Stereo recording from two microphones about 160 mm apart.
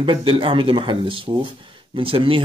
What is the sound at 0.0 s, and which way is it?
Speech, 30° right (ahead or behind).